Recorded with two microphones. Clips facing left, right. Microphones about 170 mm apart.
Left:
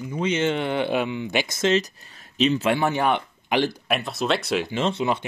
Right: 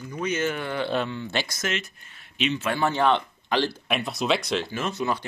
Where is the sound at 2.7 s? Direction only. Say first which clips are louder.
Even; 15° left (ahead or behind).